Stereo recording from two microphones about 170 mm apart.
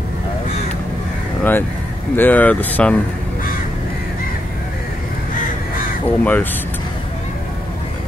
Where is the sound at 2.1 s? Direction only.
10° left (ahead or behind).